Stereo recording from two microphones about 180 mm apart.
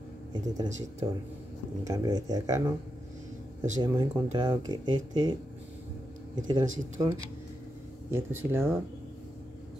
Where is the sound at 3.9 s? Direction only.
20° right (ahead or behind).